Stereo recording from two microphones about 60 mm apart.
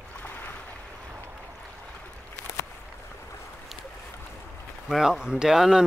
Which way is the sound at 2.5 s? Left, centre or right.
Left.